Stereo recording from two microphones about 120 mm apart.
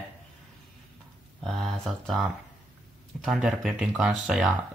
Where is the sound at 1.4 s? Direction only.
Centre (ahead or behind).